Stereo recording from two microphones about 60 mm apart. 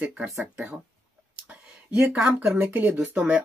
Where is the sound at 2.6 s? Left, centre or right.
Right.